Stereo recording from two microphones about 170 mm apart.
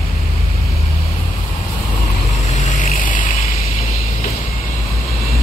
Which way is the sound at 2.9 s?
50° left (ahead or behind).